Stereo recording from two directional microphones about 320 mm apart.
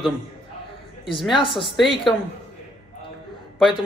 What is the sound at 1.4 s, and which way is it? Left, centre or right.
Speech, centre.